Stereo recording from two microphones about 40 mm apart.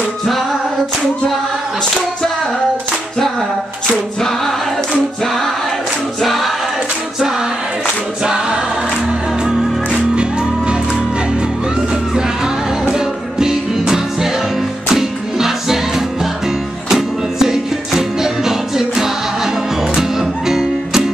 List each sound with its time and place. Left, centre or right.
6.2 s choir: centre
8.2 s choir: right
10.1 s music: right
12.9 s music: centre